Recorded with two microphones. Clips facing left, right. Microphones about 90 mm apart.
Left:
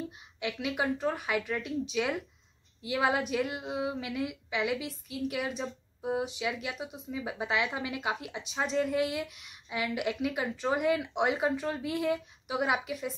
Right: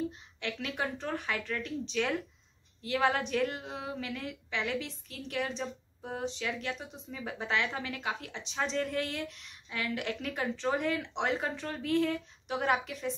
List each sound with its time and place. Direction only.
0.4 s a woman's voice: 10° left (ahead or behind)